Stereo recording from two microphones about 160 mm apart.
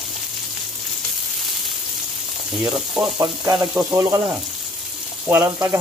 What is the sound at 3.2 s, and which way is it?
Frying, 25° right (ahead or behind).